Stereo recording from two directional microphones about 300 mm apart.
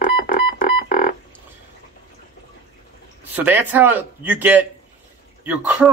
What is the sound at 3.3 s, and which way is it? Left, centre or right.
Speech, centre.